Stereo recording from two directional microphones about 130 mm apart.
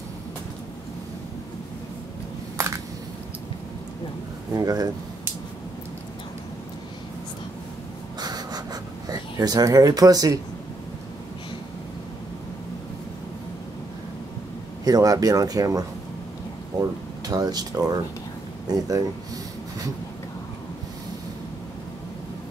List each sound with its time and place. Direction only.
2.5 s a sound: 20° right (ahead or behind)
4.6 s speech: 30° right (ahead or behind)
8.2 s a sound: 30° right (ahead or behind)
9.1 s speech: 30° right (ahead or behind)
14.9 s speech: 30° right (ahead or behind)
17.3 s speech: 30° right (ahead or behind)